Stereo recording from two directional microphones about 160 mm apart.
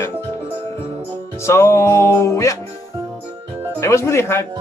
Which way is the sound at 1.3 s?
15° left (ahead or behind).